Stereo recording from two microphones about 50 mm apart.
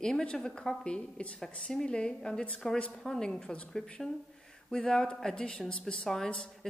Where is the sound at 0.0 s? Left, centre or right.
Centre.